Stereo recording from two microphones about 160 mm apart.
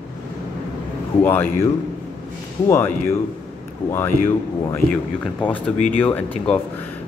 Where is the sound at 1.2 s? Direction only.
10° left (ahead or behind).